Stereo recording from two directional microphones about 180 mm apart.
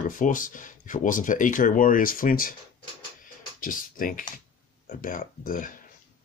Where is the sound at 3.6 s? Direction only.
50° left (ahead or behind).